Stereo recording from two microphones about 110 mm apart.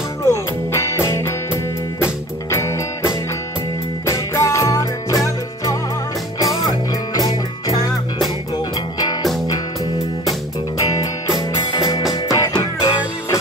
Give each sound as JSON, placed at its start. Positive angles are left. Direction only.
{"t": 0.2, "sound": "music", "side_deg": 25}
{"t": 4.0, "sound": "music", "side_deg": 30}
{"t": 7.2, "sound": "music", "side_deg": 35}
{"t": 11.3, "sound": "music", "side_deg": 40}